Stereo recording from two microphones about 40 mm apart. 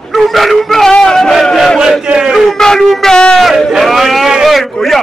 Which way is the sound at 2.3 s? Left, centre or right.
Centre.